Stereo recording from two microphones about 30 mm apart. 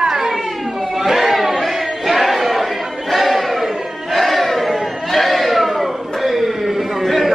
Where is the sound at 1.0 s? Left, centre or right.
Centre.